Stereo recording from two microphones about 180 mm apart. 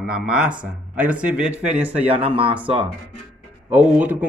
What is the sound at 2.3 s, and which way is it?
Speech, 30° right (ahead or behind).